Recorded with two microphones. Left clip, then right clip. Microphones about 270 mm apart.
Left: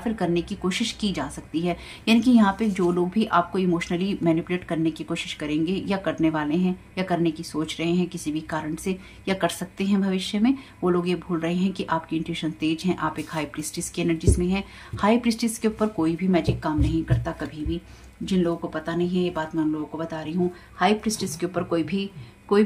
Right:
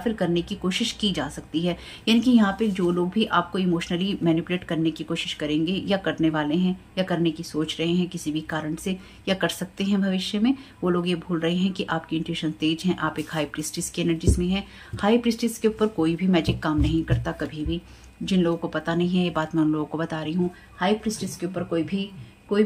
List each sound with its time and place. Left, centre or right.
0.0 s speech: centre
20.8 s speech: centre